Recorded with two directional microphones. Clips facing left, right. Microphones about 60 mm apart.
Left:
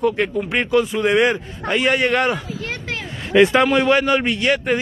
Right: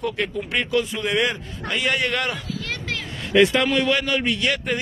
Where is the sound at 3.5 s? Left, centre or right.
Left.